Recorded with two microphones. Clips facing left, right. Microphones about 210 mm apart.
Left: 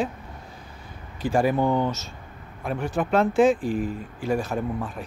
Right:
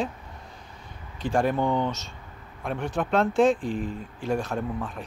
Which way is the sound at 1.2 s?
5° left (ahead or behind).